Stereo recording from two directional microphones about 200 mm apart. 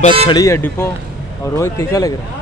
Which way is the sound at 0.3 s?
15° left (ahead or behind).